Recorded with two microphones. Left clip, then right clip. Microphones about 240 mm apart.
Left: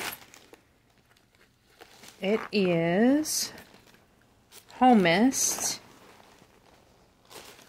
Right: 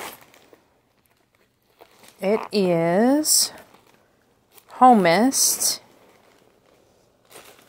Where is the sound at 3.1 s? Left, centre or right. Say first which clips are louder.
Right 7 dB; right.